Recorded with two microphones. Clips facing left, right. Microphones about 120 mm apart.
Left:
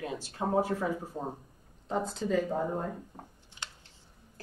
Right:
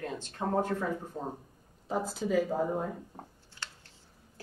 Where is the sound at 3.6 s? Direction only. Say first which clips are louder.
Even; 20° left (ahead or behind).